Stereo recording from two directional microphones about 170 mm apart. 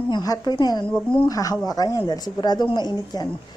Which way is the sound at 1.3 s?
20° left (ahead or behind).